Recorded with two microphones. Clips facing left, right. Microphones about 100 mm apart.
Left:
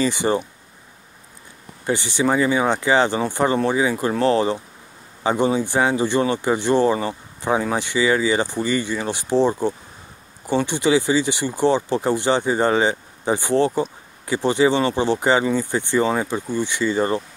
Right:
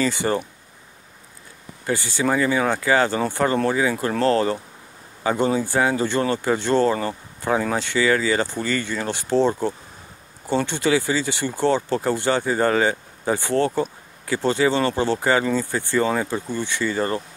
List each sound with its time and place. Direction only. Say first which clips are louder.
0.0 s speech: left 2 dB; 20° left (ahead or behind)
1.9 s speech: left 2 dB; 20° left (ahead or behind)